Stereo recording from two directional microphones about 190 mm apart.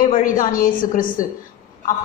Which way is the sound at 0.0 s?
45° left (ahead or behind).